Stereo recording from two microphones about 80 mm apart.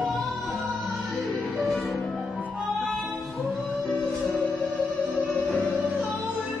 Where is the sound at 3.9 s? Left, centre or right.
Centre.